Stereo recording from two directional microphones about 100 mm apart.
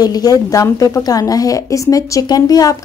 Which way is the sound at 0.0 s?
40° left (ahead or behind).